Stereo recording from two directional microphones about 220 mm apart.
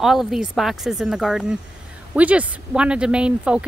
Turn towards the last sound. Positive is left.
turn(degrees=-5)  # may be behind; listen again after turning